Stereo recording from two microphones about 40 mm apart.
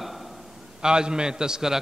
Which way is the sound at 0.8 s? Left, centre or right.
Centre.